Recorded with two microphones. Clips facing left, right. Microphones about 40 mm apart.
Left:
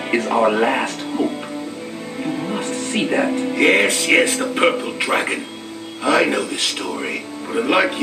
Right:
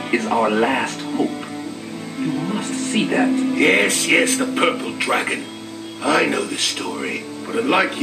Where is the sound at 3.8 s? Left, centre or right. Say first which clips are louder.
Left 1 dB; centre.